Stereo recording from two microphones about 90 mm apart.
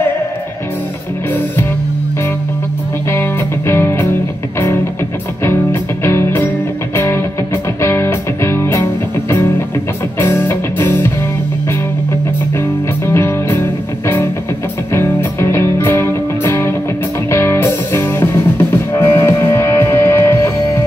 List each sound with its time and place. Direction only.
3.1 s music: 25° left (ahead or behind)
5.4 s music: 25° left (ahead or behind)
7.8 s music: 30° left (ahead or behind)
10.2 s music: 25° left (ahead or behind)
13.0 s music: 30° left (ahead or behind)